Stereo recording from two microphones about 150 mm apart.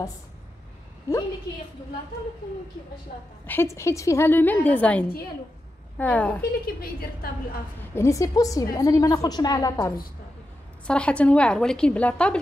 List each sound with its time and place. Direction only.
1.1 s a woman's voice: 20° left (ahead or behind)
3.4 s a woman's voice: 15° left (ahead or behind)
6.6 s a woman's voice: 85° left
7.9 s a woman's voice: 20° left (ahead or behind)
10.9 s a woman's voice: 10° left (ahead or behind)